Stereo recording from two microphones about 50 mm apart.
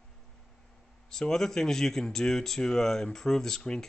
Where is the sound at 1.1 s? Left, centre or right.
Centre.